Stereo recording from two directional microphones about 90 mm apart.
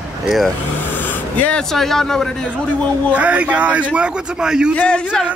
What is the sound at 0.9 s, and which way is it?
Vehicle, 20° left (ahead or behind).